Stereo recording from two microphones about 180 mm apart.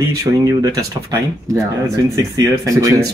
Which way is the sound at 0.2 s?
20° right (ahead or behind).